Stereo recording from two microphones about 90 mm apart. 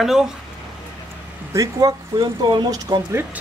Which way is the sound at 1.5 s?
40° right (ahead or behind).